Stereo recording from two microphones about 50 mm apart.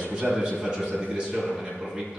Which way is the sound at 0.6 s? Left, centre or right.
Centre.